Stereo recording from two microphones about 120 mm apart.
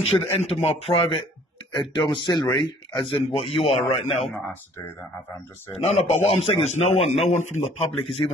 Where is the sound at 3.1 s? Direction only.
50° left (ahead or behind).